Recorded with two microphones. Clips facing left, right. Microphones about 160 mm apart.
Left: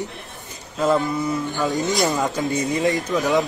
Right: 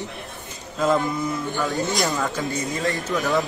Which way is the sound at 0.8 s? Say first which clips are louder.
Left 2 dB; 10° left (ahead or behind).